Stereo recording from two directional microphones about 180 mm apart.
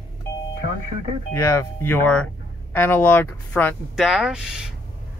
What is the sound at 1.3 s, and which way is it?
Speech, 15° left (ahead or behind).